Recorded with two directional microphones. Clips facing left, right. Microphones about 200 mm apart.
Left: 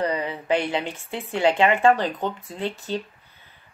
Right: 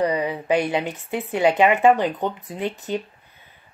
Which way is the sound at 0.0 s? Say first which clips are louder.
Right 4 dB; 15° right (ahead or behind).